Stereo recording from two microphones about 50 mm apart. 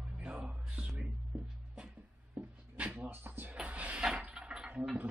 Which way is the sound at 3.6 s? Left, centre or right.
Right.